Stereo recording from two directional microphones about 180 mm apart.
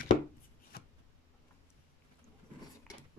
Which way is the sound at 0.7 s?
60° left (ahead or behind).